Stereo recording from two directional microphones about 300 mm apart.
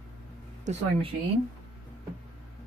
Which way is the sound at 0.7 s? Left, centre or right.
Right.